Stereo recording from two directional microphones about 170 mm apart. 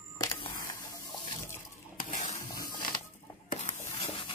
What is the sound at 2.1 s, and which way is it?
Spray, 45° left (ahead or behind).